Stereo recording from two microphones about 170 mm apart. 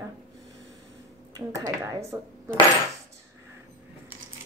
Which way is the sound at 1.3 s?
20° right (ahead or behind).